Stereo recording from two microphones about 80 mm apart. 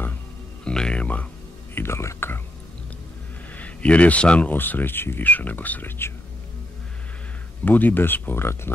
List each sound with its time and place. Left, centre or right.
0.7 s music: centre
1.8 s speech: left
3.5 s speech: centre
7.6 s speech: left